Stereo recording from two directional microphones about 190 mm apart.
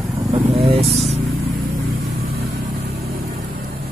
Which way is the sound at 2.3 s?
55° right (ahead or behind).